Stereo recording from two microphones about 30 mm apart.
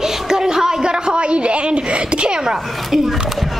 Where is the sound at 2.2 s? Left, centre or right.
Right.